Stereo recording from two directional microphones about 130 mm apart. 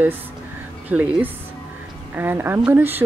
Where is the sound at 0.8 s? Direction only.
10° right (ahead or behind).